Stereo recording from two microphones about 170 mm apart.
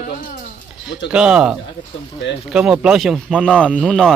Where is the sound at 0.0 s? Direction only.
50° left (ahead or behind).